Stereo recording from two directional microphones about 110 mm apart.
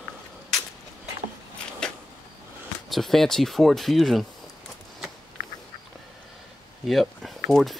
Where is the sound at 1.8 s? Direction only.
5° left (ahead or behind).